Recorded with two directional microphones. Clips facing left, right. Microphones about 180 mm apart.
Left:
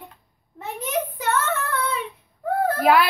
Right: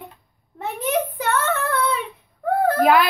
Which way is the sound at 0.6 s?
60° right (ahead or behind).